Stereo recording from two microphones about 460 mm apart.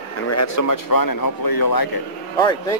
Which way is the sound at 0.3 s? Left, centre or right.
Left.